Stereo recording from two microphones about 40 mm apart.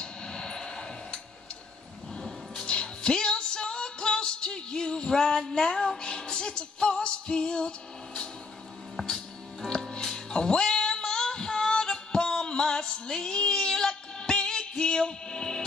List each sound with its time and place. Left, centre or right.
0.0 s a sound: centre
2.6 s music: left
9.1 s music: centre